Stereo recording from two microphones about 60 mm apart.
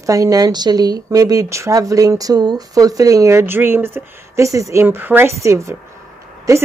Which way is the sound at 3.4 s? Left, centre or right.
Right.